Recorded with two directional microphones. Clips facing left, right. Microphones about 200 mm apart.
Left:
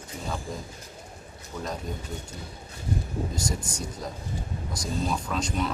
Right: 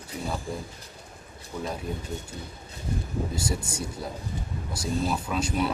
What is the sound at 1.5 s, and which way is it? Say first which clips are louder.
Speech: right 2 dB; 15° right (ahead or behind).